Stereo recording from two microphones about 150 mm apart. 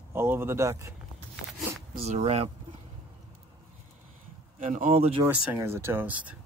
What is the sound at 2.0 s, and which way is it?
Speech, 45° right (ahead or behind).